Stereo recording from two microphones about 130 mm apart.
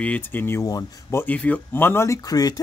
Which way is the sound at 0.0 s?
15° left (ahead or behind).